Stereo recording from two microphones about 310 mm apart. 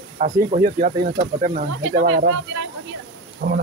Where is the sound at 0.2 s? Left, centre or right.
Right.